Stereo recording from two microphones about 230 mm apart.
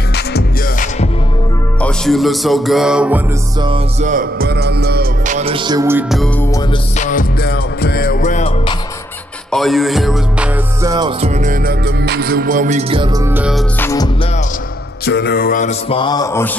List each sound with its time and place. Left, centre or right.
0.1 s music: left
1.8 s music: centre
4.0 s music: right; by 6.3 s centre
6.4 s mantra: centre
7.0 s music: left
9.5 s music: centre
10.8 s music: centre
13.7 s music: centre
15.0 s mantra: left
15.9 s mantra: centre